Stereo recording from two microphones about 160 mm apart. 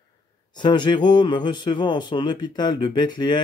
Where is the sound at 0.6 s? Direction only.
25° left (ahead or behind).